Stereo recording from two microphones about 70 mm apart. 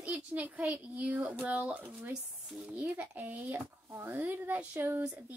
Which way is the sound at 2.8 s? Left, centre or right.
Right.